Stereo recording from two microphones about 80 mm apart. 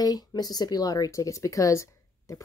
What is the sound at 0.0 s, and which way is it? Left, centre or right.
A woman's voice, left.